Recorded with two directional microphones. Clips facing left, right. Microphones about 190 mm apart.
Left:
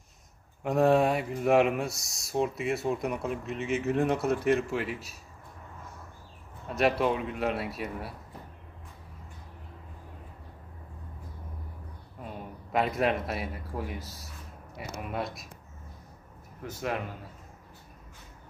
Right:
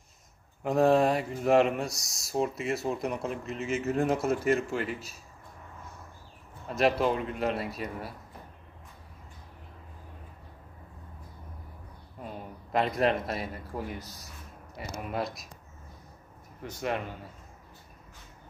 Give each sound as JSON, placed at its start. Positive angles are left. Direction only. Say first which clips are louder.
{"t": 0.7, "sound": "speech", "louder": "even", "side_deg": 0}
{"t": 6.7, "sound": "speech", "louder": "even", "side_deg": 0}
{"t": 12.2, "sound": "speech", "louder": "even", "side_deg": 5}
{"t": 16.6, "sound": "speech", "louder": "right 1 dB", "side_deg": 0}